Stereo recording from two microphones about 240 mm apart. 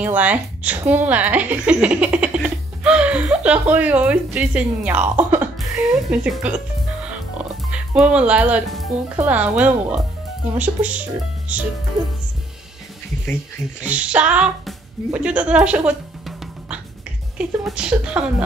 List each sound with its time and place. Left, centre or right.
0.0 s a woman's voice: centre
13.8 s speech: centre
15.0 s music: centre
17.4 s speech: centre